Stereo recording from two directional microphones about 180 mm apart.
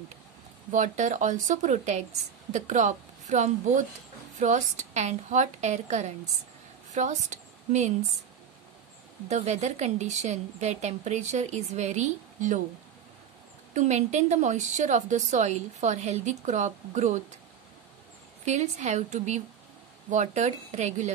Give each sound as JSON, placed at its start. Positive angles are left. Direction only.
{"t": 0.7, "sound": "a woman's voice", "side_deg": -45}
{"t": 9.3, "sound": "a woman's voice", "side_deg": -40}
{"t": 13.7, "sound": "a woman's voice", "side_deg": -40}
{"t": 18.4, "sound": "a woman's voice", "side_deg": -40}